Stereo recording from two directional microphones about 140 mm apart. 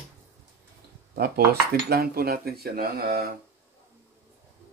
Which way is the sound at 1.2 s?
90° right.